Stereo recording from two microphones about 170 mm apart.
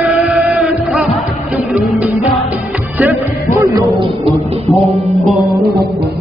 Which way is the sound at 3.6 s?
20° right (ahead or behind).